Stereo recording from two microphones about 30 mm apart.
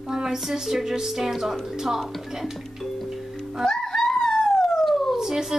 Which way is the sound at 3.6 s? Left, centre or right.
Centre.